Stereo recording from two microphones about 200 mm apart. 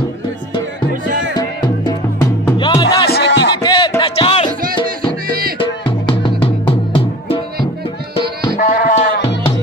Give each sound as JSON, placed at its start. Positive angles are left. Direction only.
{"t": 2.4, "sound": "music", "side_deg": 20}
{"t": 3.1, "sound": "music", "side_deg": 55}
{"t": 3.6, "sound": "music", "side_deg": 20}
{"t": 5.6, "sound": "music", "side_deg": 25}
{"t": 8.5, "sound": "sheep", "side_deg": 40}